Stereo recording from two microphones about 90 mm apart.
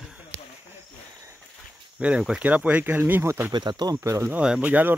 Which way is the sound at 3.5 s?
55° right (ahead or behind).